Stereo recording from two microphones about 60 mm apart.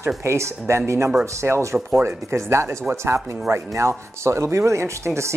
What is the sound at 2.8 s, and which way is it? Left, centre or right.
Speech, right.